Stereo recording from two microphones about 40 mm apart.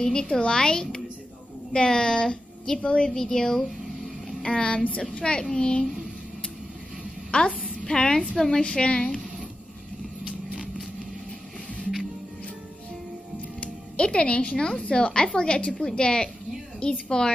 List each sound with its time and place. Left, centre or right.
0.0 s a woman's voice: centre
4.4 s a woman's voice: left
7.2 s a woman's voice: left; by 8.6 s centre
8.6 s a woman's voice: left
11.8 s music: centre
13.6 s a woman's voice: left